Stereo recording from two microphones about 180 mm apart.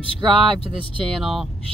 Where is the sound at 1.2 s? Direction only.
Centre (ahead or behind).